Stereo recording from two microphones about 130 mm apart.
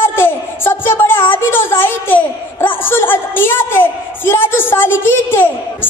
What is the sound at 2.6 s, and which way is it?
A woman's voice, 15° left (ahead or behind).